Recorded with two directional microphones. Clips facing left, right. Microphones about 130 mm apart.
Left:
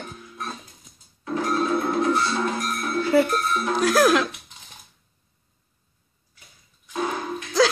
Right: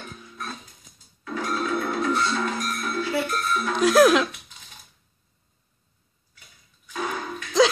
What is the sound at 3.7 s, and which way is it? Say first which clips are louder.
Music: right 2 dB; centre (ahead or behind).